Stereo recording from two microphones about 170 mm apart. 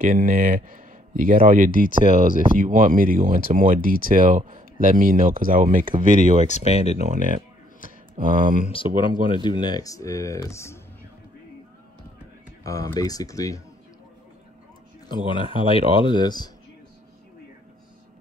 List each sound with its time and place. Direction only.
0.0 s speech: 55° right (ahead or behind)
1.9 s speech: 50° left (ahead or behind)
2.5 s speech: 50° right (ahead or behind)
6.4 s speech: 40° left (ahead or behind)
7.0 s speech: 55° right (ahead or behind)
8.6 s speech: 30° left (ahead or behind)
12.6 s speech: 20° left (ahead or behind)
15.0 s speech: 30° left (ahead or behind)